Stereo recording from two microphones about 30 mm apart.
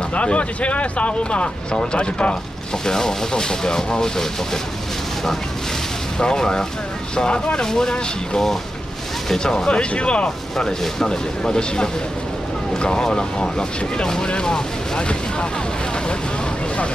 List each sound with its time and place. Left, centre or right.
0.1 s speech: left
2.8 s speech: centre
6.1 s speech: left
7.2 s speech: left
7.6 s speech: left
9.7 s speech: left
11.1 s speech: left